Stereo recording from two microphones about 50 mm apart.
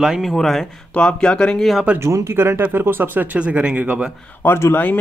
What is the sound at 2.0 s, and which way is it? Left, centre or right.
Speech, right.